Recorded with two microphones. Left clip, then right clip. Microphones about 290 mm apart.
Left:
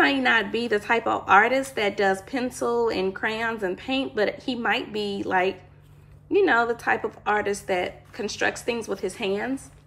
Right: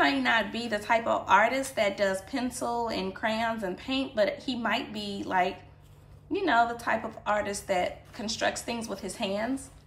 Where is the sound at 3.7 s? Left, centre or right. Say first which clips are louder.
Left 3 dB; centre.